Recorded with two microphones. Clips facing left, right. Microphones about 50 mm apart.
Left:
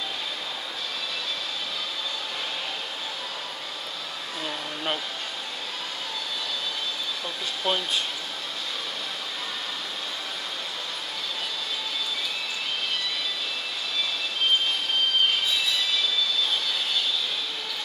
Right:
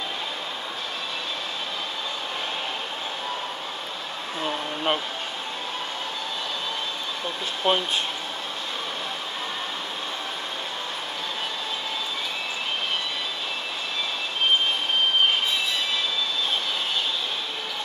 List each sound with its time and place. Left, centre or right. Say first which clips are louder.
4.4 s a sound: right 5 dB; right
7.6 s speech: right 4 dB; right
15.2 s train: right 2 dB; right